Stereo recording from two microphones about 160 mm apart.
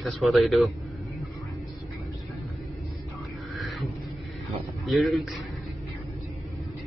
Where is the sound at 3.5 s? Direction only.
Centre (ahead or behind).